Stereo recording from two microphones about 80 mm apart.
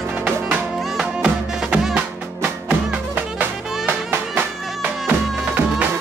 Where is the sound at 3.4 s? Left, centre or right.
Centre.